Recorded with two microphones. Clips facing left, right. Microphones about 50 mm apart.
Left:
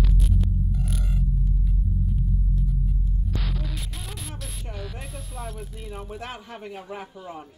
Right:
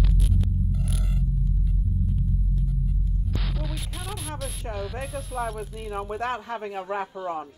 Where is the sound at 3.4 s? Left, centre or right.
Centre.